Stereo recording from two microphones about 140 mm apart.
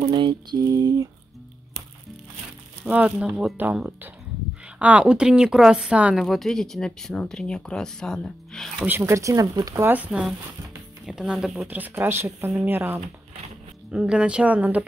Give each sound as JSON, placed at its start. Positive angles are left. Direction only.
{"t": 0.1, "sound": "a sound", "side_deg": -35}
{"t": 2.8, "sound": "a woman's voice", "side_deg": -10}
{"t": 8.8, "sound": "speech", "side_deg": -20}
{"t": 9.8, "sound": "speech", "side_deg": -10}